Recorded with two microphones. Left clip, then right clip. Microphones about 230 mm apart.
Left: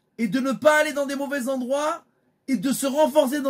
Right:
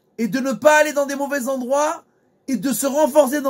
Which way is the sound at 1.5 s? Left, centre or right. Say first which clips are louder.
Right 5 dB; centre.